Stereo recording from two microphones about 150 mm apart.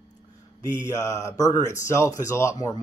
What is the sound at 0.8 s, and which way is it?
Mantra, 20° left (ahead or behind).